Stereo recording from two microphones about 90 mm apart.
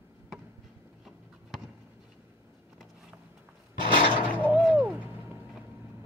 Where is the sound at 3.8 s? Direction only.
75° right (ahead or behind).